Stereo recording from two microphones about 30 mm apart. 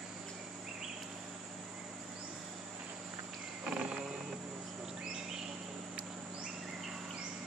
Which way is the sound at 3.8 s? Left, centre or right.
Right.